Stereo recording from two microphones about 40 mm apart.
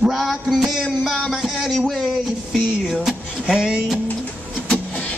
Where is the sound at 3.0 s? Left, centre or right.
Centre.